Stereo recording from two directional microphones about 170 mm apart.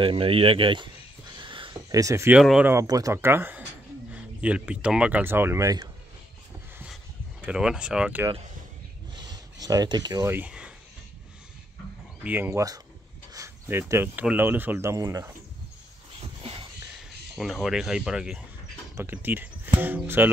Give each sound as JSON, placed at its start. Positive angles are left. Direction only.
{"t": 0.0, "sound": "speech", "side_deg": -30}
{"t": 1.4, "sound": "a sound", "side_deg": -30}
{"t": 2.4, "sound": "speech", "side_deg": -5}
{"t": 2.7, "sound": "speech", "side_deg": -20}
{"t": 7.4, "sound": "speech", "side_deg": -5}
{"t": 9.1, "sound": "speech", "side_deg": -25}
{"t": 12.2, "sound": "speech", "side_deg": -10}
{"t": 17.4, "sound": "speech", "side_deg": 0}